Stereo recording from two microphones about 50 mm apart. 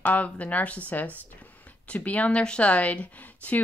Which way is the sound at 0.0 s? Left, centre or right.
Left.